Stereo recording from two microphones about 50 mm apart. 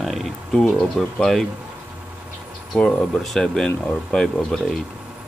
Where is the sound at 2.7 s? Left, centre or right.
Centre.